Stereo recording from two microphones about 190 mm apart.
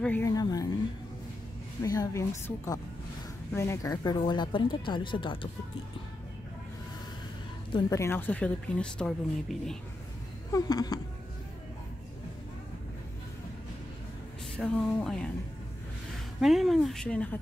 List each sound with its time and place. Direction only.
0.0 s speech: 10° left (ahead or behind)
1.8 s speech: 15° left (ahead or behind)
7.7 s speech: 15° left (ahead or behind)
10.5 s speech: 20° left (ahead or behind)
14.6 s speech: 5° left (ahead or behind)
16.3 s speech: centre (ahead or behind)